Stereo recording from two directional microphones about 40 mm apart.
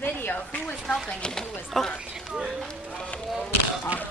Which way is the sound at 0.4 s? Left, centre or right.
Left.